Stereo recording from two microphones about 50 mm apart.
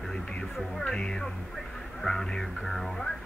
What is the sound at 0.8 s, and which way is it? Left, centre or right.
Speech, centre.